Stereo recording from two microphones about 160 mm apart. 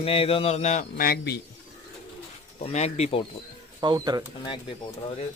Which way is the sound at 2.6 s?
40° left (ahead or behind).